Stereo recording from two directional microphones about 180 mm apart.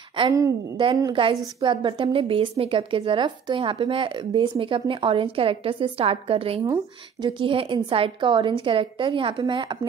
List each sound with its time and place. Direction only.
0.2 s a woman's voice: 25° right (ahead or behind)